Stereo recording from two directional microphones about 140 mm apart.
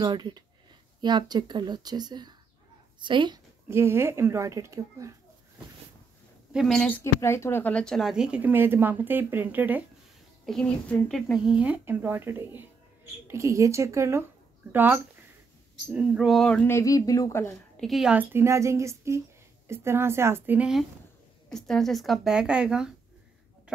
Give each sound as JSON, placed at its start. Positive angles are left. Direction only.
{"t": 0.0, "sound": "a woman's voice", "side_deg": -30}
{"t": 3.6, "sound": "speech", "side_deg": -20}
{"t": 6.5, "sound": "speech", "side_deg": 0}
{"t": 6.9, "sound": "speech", "side_deg": 20}
{"t": 10.4, "sound": "speech", "side_deg": 5}
{"t": 16.6, "sound": "speech", "side_deg": 20}
{"t": 17.7, "sound": "speech", "side_deg": 0}
{"t": 21.5, "sound": "speech", "side_deg": 5}